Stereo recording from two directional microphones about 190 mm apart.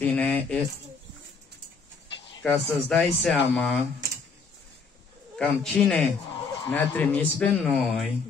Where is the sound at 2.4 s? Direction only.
5° left (ahead or behind).